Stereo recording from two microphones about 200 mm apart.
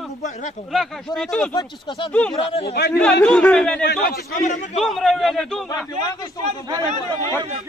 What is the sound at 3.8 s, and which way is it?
Speech, 50° left (ahead or behind).